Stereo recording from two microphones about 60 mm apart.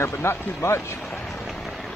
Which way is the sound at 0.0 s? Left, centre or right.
Left.